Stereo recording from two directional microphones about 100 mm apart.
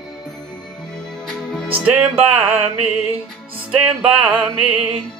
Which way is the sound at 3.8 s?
10° right (ahead or behind).